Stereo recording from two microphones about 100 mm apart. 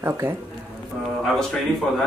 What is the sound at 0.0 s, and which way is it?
Speech, 25° right (ahead or behind).